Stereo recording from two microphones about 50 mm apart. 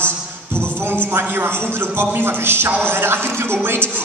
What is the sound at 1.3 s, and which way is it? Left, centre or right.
A man's voice, right.